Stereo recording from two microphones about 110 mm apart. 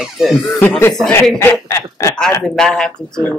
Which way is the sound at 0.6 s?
20° left (ahead or behind).